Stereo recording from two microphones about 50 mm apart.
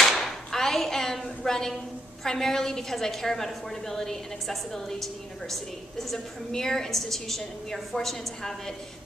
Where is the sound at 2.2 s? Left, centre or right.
Centre.